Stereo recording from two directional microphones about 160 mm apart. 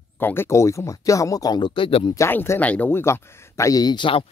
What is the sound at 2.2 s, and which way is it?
Speech, 15° left (ahead or behind).